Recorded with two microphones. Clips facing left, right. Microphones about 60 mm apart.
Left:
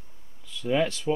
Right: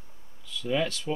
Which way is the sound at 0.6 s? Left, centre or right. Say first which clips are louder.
Left 3 dB; centre.